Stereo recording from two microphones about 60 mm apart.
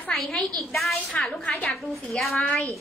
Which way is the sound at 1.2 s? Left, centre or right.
Centre.